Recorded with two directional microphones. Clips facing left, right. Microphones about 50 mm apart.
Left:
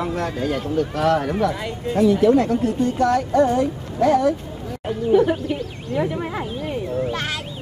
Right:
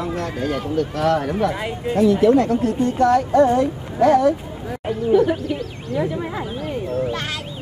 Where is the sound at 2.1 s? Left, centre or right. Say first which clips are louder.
Right 1 dB; centre.